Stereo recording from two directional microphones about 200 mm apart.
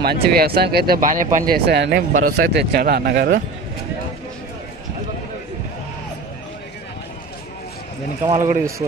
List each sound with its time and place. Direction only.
0.0 s speech: 50° right (ahead or behind)
8.3 s speech: 35° right (ahead or behind)